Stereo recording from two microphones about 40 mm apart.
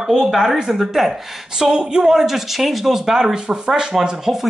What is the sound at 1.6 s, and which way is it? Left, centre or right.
A woman's voice, right.